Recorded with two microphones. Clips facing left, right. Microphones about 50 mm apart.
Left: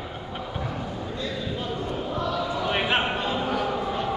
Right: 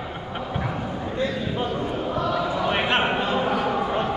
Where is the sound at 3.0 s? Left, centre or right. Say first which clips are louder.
Right 4 dB; centre.